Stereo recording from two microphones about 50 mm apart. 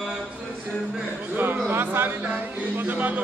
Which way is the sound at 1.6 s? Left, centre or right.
Right.